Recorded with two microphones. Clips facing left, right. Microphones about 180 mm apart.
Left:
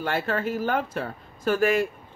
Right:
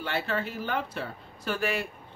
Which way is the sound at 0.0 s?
45° left (ahead or behind).